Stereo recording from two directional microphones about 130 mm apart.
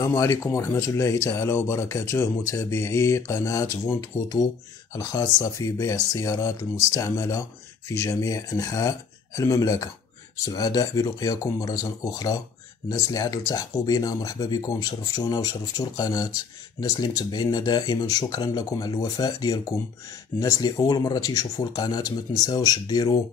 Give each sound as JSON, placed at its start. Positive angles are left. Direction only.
{"t": 0.0, "sound": "speech", "side_deg": 20}